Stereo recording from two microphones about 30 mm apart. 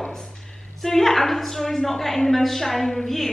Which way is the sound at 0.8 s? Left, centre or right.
Centre.